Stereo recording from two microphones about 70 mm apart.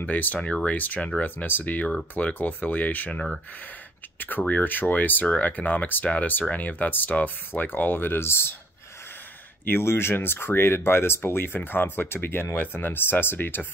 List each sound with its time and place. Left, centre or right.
0.0 s speech: left
9.7 s speech: left